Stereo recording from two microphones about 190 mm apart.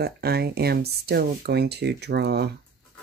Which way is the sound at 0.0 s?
55° right (ahead or behind).